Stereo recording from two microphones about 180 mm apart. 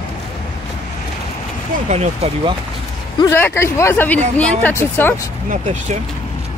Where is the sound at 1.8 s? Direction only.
35° right (ahead or behind).